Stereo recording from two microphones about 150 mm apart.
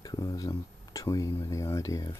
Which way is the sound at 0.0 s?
25° left (ahead or behind).